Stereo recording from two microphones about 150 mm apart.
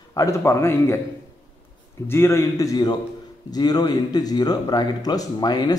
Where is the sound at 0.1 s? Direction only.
20° left (ahead or behind).